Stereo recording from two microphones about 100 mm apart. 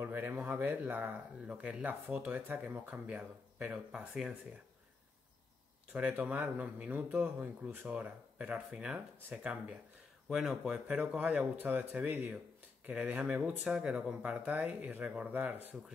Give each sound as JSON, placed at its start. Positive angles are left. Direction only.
{"t": 0.0, "sound": "speech", "side_deg": -20}
{"t": 5.9, "sound": "speech", "side_deg": -15}